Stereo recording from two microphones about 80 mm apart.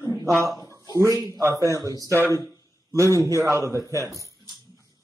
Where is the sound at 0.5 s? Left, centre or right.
Left.